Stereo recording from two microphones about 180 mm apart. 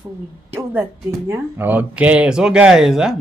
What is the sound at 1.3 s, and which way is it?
Speech, 10° right (ahead or behind).